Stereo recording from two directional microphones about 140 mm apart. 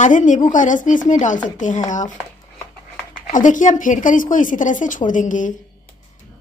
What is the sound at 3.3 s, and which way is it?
A woman's voice, 65° left (ahead or behind).